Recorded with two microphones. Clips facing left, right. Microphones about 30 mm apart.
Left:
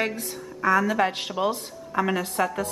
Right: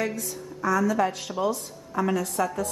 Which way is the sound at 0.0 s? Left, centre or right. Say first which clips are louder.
Left 1 dB; left.